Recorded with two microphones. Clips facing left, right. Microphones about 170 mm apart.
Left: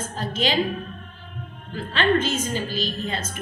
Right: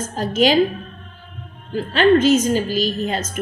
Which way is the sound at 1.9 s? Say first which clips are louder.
Right 8 dB; 40° right (ahead or behind).